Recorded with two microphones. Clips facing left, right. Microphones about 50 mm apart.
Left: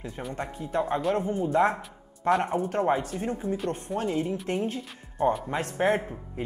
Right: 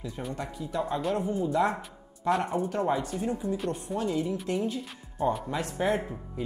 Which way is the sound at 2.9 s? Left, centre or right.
Left.